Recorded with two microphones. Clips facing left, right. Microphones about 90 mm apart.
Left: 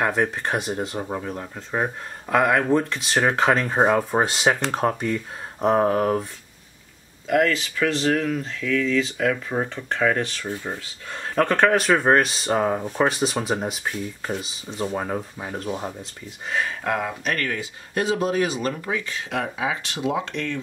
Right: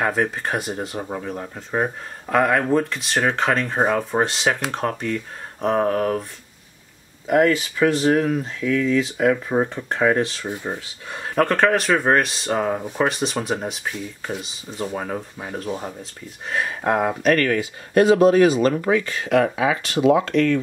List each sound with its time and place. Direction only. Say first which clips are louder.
0.0 s speech: right 1 dB; centre (ahead or behind)
7.2 s speech: right 3 dB; 15° right (ahead or behind)
11.3 s speech: right 1 dB; centre (ahead or behind)
17.0 s speech: right 8 dB; 50° right (ahead or behind)